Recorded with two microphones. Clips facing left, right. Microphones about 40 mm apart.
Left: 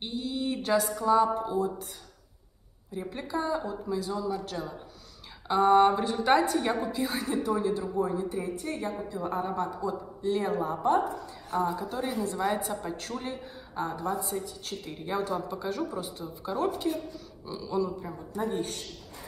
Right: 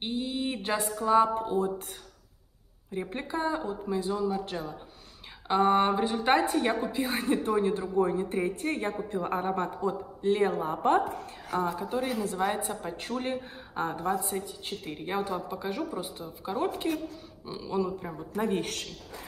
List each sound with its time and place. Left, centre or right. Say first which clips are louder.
0.0 s a sound: right 1 dB; right
1.1 s a woman's voice: right 1 dB; right
2.9 s a woman's voice: right 1 dB; right
12.4 s a woman's voice: even; right
13.2 s speech: right 4 dB; right
14.3 s a woman's voice: even; right
18.3 s a woman's voice: right 2 dB; right